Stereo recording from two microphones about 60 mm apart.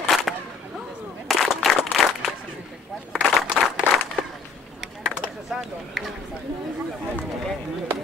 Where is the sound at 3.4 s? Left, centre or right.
Centre.